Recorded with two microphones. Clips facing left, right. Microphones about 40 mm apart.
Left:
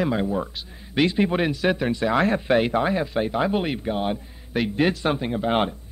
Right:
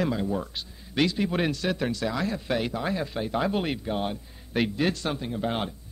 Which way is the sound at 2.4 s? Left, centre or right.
Left.